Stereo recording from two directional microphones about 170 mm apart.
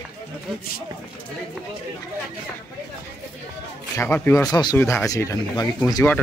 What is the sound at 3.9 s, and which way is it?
Speech, 10° left (ahead or behind).